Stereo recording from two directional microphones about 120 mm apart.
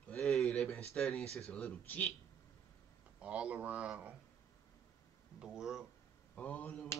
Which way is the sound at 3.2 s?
10° right (ahead or behind).